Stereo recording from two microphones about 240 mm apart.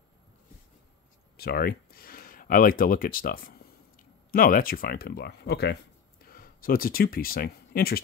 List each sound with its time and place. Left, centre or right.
1.3 s speech: left